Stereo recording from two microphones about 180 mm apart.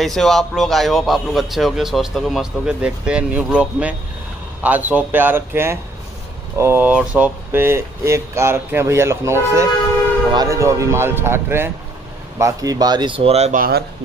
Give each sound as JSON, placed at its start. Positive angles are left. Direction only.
{"t": 0.0, "sound": "a man's voice", "side_deg": 0}
{"t": 13.6, "sound": "speech", "side_deg": -60}